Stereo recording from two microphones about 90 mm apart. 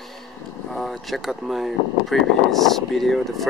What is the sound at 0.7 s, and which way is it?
Speech, centre (ahead or behind).